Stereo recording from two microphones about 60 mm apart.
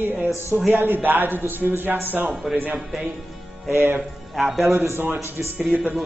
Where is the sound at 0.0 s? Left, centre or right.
Right.